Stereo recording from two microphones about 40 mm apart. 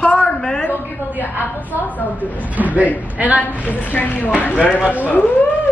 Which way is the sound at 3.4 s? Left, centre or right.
Left.